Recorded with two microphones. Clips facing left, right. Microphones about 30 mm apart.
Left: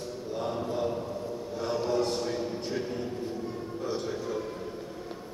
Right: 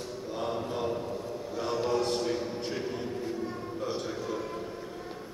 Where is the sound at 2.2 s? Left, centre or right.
Centre.